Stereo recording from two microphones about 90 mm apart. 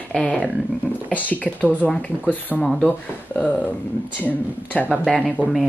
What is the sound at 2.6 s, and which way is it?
Speech, 5° left (ahead or behind).